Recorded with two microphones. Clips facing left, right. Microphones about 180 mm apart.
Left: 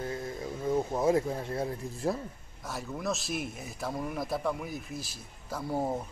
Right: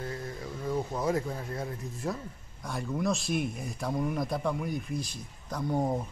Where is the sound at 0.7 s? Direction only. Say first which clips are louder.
Left 3 dB; 25° left (ahead or behind).